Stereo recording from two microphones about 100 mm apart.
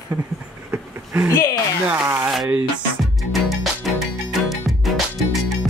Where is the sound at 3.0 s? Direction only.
Centre (ahead or behind).